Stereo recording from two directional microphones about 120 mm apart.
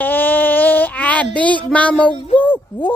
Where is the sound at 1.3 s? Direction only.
10° left (ahead or behind).